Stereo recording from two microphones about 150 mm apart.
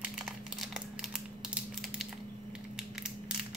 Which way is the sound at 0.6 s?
5° right (ahead or behind).